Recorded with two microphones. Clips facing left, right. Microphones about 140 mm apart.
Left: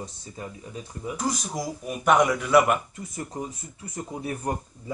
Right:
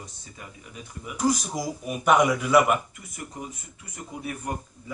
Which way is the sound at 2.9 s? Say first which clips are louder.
Left 5 dB; 30° left (ahead or behind).